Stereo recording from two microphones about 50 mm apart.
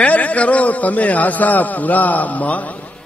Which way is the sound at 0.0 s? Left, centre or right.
Left.